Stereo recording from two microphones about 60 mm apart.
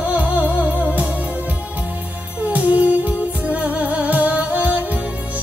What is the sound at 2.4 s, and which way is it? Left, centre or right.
Music, right.